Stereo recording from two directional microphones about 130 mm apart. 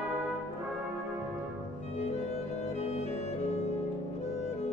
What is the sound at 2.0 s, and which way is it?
Music, 60° left (ahead or behind).